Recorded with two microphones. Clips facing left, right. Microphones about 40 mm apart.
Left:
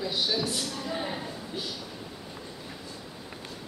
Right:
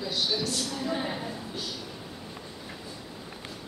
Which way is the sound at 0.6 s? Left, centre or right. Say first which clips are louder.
Right 2 dB; centre.